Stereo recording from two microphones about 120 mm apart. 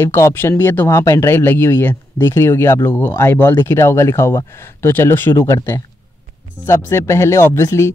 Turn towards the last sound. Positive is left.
turn(degrees=25)  # may be behind; listen again after turning